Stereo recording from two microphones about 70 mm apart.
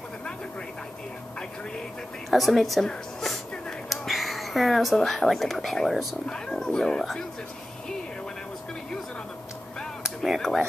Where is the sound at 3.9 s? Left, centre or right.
Centre.